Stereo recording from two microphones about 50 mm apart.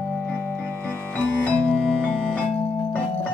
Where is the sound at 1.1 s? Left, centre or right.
Left.